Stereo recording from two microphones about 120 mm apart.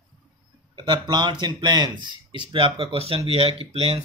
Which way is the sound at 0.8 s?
40° right (ahead or behind).